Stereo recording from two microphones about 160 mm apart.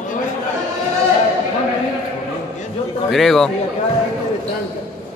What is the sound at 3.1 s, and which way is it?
Speech, centre (ahead or behind).